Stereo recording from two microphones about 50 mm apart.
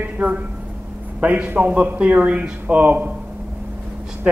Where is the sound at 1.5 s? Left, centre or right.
Right.